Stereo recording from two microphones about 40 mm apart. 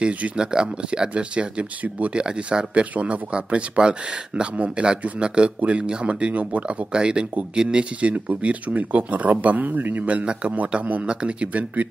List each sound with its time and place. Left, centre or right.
0.4 s speech: right
2.1 s speech: right
6.9 s speech: right
8.0 s speech: right
10.0 s speech: right